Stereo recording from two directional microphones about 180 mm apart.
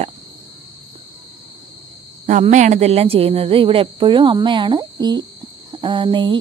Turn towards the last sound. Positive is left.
turn(degrees=-25)  # may be behind; listen again after turning